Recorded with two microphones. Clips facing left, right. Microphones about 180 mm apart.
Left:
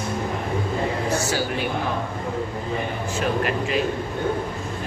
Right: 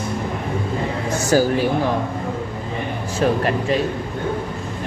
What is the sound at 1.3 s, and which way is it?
Speech, 45° right (ahead or behind).